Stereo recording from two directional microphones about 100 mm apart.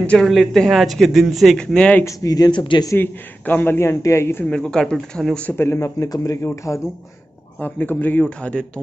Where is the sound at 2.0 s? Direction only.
35° left (ahead or behind); by 2.9 s 50° left (ahead or behind).